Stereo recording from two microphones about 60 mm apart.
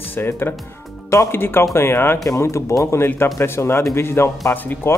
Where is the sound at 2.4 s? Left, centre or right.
Left.